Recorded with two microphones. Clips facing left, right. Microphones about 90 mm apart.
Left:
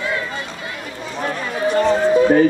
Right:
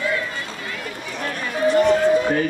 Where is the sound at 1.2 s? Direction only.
20° left (ahead or behind).